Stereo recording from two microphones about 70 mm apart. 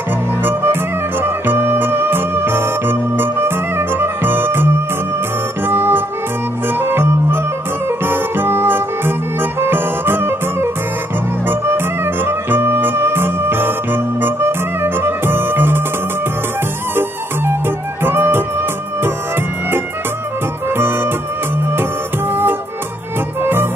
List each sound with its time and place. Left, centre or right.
0.4 s music: right
17.5 s music: right
20.7 s music: right
22.3 s music: right